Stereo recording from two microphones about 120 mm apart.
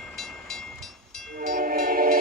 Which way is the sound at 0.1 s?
Centre (ahead or behind).